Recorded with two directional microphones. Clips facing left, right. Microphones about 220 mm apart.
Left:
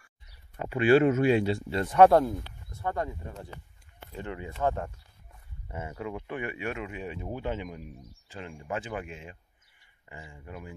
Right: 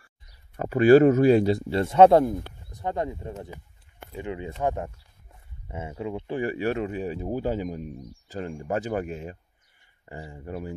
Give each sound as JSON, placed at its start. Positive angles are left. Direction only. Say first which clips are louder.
{"t": 0.6, "sound": "speech", "louder": "right 6 dB", "side_deg": -40}